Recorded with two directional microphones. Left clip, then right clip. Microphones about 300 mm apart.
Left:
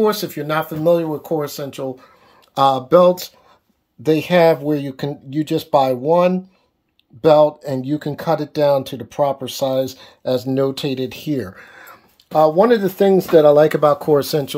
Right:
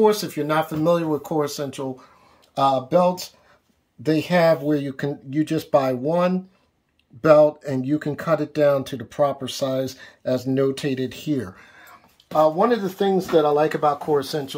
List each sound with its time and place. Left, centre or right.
0.0 s speech: centre
12.3 s speech: left